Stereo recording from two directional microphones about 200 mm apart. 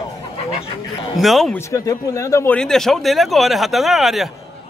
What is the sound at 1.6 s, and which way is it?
Speech, 15° left (ahead or behind).